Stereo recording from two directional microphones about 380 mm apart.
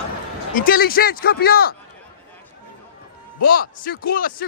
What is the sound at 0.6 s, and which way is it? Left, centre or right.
Speech, left.